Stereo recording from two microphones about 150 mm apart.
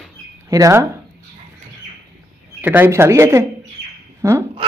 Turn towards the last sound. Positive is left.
turn(degrees=-20)  # may be behind; listen again after turning